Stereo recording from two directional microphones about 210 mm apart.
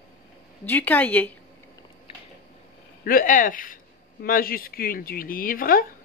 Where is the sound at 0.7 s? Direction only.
10° left (ahead or behind).